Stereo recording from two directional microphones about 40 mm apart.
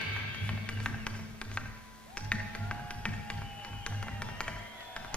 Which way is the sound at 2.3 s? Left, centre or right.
Left.